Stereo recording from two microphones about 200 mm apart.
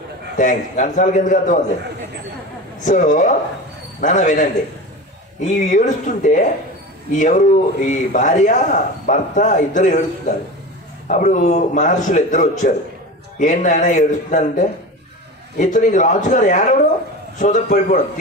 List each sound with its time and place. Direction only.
0.4 s speech: 40° left (ahead or behind)
2.8 s speech: 40° left (ahead or behind)
11.1 s speech: 40° left (ahead or behind)